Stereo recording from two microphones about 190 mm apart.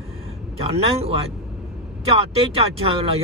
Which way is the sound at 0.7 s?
30° right (ahead or behind).